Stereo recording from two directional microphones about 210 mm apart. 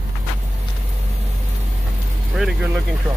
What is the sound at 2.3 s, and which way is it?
Vehicle, centre (ahead or behind).